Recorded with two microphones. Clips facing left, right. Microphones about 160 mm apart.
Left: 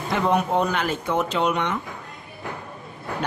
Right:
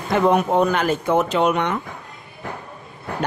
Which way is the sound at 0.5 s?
45° right (ahead or behind).